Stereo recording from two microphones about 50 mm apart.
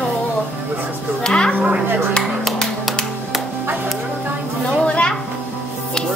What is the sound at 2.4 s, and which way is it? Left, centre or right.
Music, centre.